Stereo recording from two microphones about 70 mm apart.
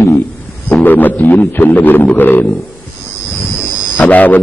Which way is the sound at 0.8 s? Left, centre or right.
Left.